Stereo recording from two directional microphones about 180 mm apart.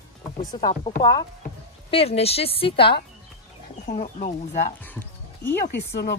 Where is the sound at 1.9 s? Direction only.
35° left (ahead or behind).